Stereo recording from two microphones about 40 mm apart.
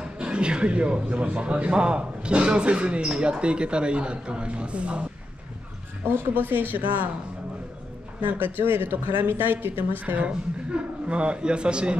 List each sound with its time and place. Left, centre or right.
0.2 s speech: right
6.0 s speech: right
8.2 s speech: right
10.2 s a man's voice: right